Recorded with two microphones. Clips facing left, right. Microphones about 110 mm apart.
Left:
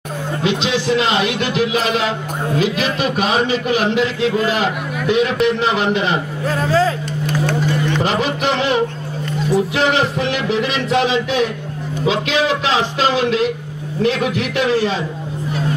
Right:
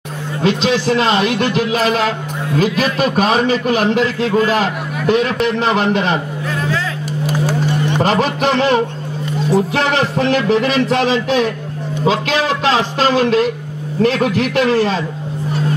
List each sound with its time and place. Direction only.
0.4 s a man's voice: 45° right (ahead or behind)
6.6 s speech: 35° left (ahead or behind)
8.0 s a man's voice: 40° right (ahead or behind)